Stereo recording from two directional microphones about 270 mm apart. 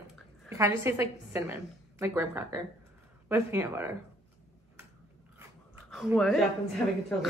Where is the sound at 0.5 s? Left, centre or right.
Centre.